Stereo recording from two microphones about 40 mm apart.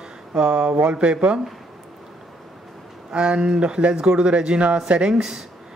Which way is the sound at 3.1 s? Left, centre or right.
Right.